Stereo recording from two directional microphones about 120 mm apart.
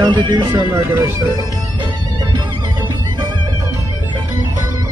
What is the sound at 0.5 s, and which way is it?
Speech, 25° right (ahead or behind).